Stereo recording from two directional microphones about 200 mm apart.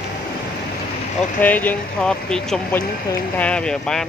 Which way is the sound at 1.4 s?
10° left (ahead or behind).